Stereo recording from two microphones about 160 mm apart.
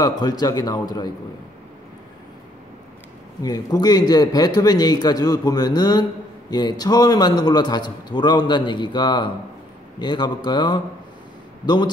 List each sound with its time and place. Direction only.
0.0 s a man's voice: 25° left (ahead or behind)
3.4 s a man's voice: 25° left (ahead or behind)